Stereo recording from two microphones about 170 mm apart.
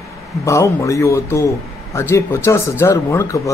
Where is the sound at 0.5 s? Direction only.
15° left (ahead or behind).